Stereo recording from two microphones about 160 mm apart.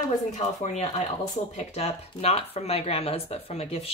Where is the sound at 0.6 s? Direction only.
45° left (ahead or behind).